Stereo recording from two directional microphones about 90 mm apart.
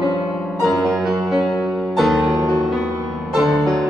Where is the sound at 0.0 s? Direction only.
Centre (ahead or behind).